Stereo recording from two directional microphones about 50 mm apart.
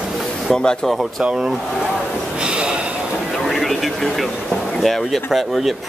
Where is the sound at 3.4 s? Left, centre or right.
Centre.